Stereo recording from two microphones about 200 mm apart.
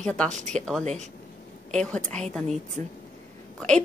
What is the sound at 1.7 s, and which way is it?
Speech, 5° left (ahead or behind).